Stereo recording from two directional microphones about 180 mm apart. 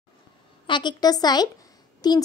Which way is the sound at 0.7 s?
25° left (ahead or behind).